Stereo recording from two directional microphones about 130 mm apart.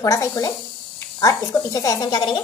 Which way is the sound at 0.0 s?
25° left (ahead or behind).